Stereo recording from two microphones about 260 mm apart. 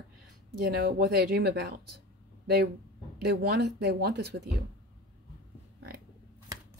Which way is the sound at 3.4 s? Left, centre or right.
Right.